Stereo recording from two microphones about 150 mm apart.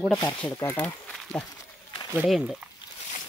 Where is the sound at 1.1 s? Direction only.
Centre (ahead or behind).